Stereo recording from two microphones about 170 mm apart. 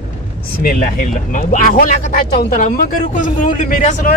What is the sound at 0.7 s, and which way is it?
Speech, 50° left (ahead or behind).